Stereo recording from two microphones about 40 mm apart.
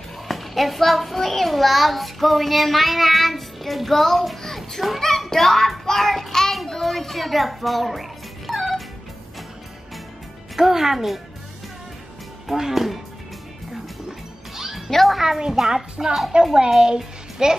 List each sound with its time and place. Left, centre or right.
0.3 s a child's voice: centre
4.4 s a sound: centre
5.0 s child singing: centre
10.5 s a child's voice: centre
12.4 s a child's voice: centre
14.5 s music: centre
14.9 s speech: centre
15.1 s a child's voice: centre